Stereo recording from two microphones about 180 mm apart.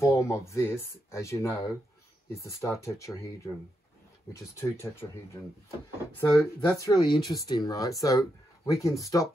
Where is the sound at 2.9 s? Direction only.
15° left (ahead or behind).